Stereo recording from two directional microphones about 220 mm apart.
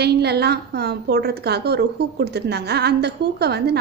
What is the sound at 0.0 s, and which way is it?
A woman's voice, 50° right (ahead or behind).